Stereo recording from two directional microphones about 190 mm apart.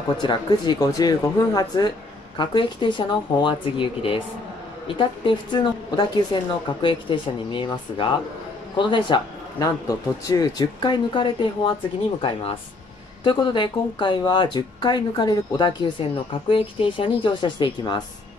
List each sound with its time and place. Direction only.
0.2 s speech: 25° left (ahead or behind)
13.2 s speech: 25° left (ahead or behind)